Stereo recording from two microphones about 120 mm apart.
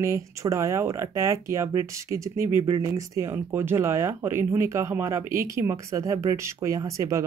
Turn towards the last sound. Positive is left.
turn(degrees=-25)  # may be behind; listen again after turning